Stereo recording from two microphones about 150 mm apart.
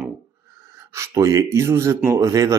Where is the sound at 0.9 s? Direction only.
20° right (ahead or behind).